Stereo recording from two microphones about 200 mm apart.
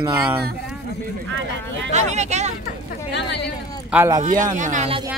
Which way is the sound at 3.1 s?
55° left (ahead or behind).